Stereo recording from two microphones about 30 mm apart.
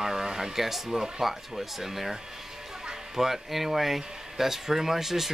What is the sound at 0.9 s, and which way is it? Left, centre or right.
Speech, centre.